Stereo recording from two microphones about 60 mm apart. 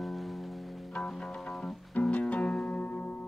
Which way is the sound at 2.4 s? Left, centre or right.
Centre.